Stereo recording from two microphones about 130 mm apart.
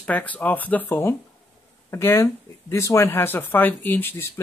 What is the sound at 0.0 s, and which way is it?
Speech, 10° left (ahead or behind).